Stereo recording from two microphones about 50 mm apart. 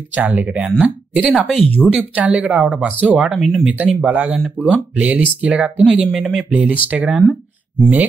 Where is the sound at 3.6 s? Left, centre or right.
Right.